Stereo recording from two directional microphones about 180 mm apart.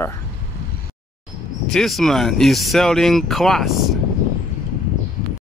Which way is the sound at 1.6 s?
Centre (ahead or behind).